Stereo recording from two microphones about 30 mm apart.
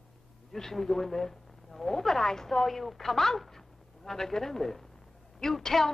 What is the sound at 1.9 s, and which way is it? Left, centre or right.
A woman's voice, centre.